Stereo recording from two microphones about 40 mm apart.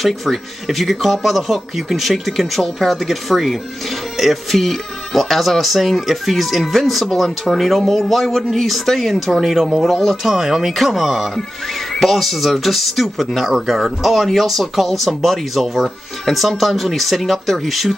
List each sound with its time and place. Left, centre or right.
0.0 s speech: centre
10.2 s speech: centre